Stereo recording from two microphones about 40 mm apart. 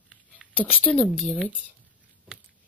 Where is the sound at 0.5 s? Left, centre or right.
Left.